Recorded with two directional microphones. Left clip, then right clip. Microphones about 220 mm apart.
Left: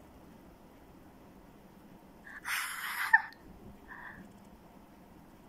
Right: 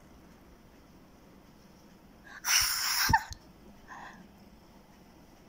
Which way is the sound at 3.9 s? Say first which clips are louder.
Right 1 dB; 15° right (ahead or behind).